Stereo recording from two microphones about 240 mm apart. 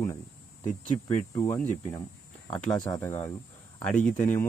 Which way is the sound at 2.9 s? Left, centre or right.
Centre.